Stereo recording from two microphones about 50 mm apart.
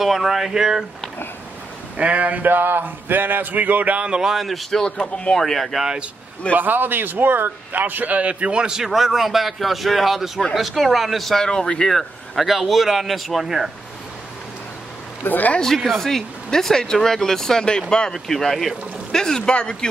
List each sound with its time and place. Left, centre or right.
0.0 s speech: centre
2.0 s speech: right
4.3 s speech: centre
4.8 s speech: centre
5.4 s speech: centre
6.5 s a man's voice: right; by 11.9 s centre
11.9 s speech: centre
15.2 s speech: left
15.6 s speech: centre
18.1 s speech: centre